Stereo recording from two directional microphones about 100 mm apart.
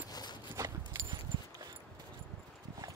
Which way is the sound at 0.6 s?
30° right (ahead or behind).